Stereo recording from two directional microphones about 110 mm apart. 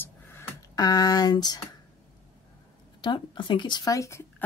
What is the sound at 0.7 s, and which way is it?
Speech, 35° left (ahead or behind).